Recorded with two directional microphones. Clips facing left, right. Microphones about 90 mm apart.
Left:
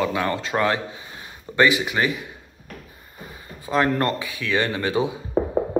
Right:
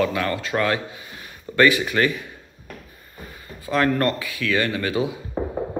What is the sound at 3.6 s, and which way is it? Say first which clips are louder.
Speech: right 1 dB; 20° left (ahead or behind).